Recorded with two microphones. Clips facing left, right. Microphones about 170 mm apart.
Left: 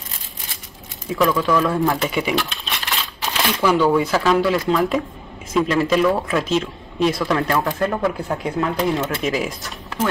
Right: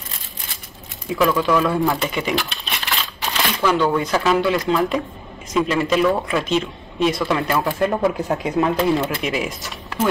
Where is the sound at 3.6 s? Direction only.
5° left (ahead or behind).